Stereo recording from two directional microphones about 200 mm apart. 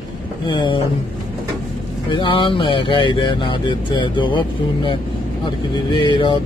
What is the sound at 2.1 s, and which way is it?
Speech, 25° left (ahead or behind).